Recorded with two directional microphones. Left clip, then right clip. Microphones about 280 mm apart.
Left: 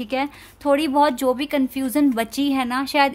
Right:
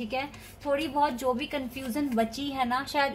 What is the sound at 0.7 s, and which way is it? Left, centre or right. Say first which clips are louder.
A woman's voice: left 8 dB; left.